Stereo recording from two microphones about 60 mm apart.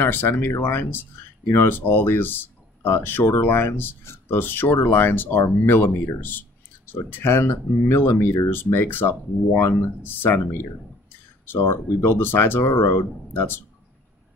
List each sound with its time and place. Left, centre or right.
0.0 s speech: left